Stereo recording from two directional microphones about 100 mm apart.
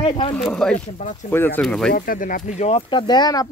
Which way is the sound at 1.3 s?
20° left (ahead or behind).